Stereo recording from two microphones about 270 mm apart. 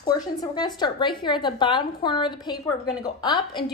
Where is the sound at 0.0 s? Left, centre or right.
Centre.